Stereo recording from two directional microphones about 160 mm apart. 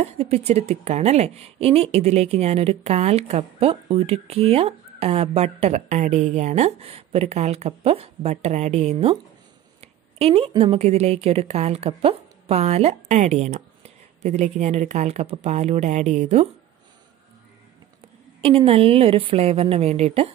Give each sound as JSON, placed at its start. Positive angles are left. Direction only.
{"t": 0.0, "sound": "a woman's voice", "side_deg": -40}
{"t": 9.8, "sound": "a sound", "side_deg": -40}
{"t": 10.6, "sound": "a woman's voice", "side_deg": -40}
{"t": 18.7, "sound": "a woman's voice", "side_deg": -35}